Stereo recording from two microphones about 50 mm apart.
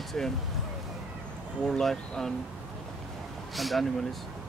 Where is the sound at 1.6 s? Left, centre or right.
Centre.